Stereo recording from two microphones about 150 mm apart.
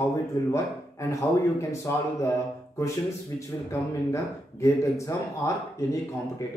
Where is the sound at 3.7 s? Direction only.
20° left (ahead or behind).